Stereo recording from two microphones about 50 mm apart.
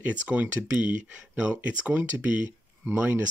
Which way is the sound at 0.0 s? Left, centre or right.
Right.